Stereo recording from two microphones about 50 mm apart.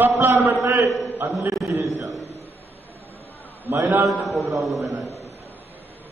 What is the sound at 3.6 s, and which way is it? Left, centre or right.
Speech, right.